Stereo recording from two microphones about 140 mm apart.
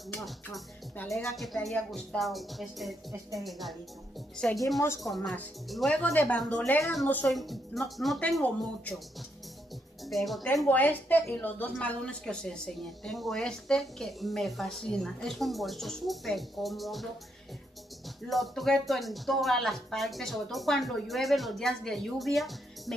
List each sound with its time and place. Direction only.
1.0 s a woman's voice: centre (ahead or behind)
3.1 s speech: 25° right (ahead or behind)
3.4 s a woman's voice: centre (ahead or behind)
10.0 s a woman's voice: centre (ahead or behind)
10.7 s a woman's voice: 15° left (ahead or behind)
18.3 s a woman's voice: centre (ahead or behind)